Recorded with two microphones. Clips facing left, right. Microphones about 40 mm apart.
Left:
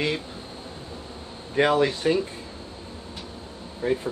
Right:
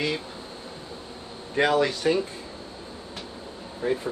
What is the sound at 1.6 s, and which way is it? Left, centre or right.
Speech, left.